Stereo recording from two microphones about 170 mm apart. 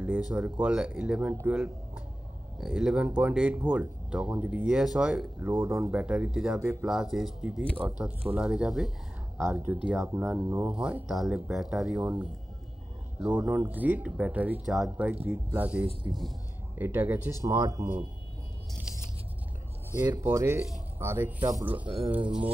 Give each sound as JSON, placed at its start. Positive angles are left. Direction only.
{"t": 0.0, "sound": "speech", "side_deg": -10}
{"t": 9.8, "sound": "speech", "side_deg": -15}
{"t": 18.9, "sound": "a sound", "side_deg": -5}
{"t": 20.0, "sound": "speech", "side_deg": -20}
{"t": 21.8, "sound": "speech", "side_deg": -35}